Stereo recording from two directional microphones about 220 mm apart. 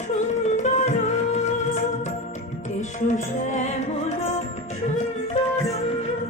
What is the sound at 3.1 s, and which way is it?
Music, 35° left (ahead or behind).